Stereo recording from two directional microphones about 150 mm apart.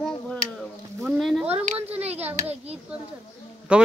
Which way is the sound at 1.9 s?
45° right (ahead or behind).